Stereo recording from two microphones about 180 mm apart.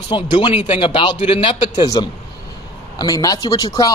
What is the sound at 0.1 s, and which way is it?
Speech, 25° left (ahead or behind).